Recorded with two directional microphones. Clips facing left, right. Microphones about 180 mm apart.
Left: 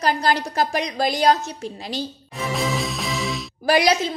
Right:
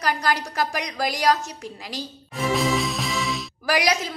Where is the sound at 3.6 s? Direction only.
30° left (ahead or behind).